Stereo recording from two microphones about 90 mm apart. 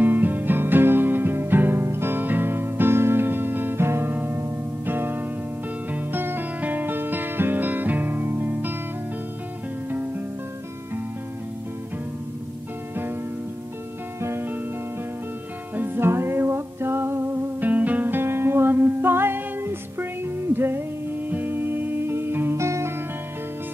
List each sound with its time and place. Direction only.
0.0 s music: 20° right (ahead or behind)
9.8 s guitar: 20° right (ahead or behind)
14.2 s music: 25° right (ahead or behind)
15.7 s music: 25° right (ahead or behind)